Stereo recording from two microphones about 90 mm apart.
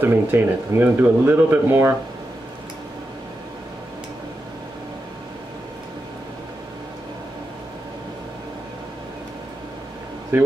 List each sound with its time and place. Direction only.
0.0 s speech: 20° right (ahead or behind)